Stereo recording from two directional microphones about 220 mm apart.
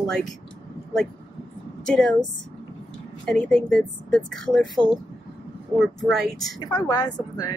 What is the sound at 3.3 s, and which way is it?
Speech, 5° left (ahead or behind).